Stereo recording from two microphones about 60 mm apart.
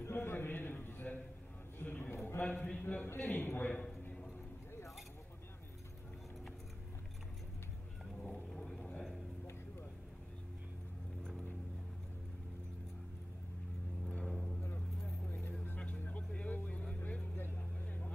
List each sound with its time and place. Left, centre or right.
0.0 s a sound: left
2.4 s a man's voice: left
8.2 s vehicle: centre
14.2 s vehicle: centre
16.1 s vehicle: left